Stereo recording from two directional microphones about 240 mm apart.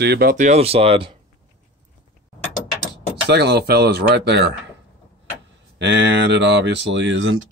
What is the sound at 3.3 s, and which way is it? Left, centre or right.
Speech, right.